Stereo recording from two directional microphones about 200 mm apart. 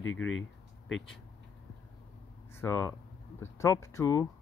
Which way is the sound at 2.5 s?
15° left (ahead or behind).